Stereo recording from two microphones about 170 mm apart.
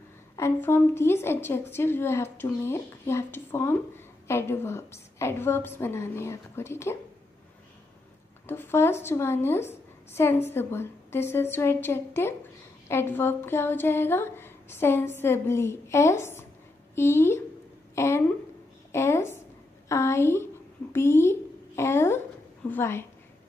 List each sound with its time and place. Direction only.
0.4 s a woman's voice: 15° left (ahead or behind)
8.5 s a woman's voice: 15° left (ahead or behind)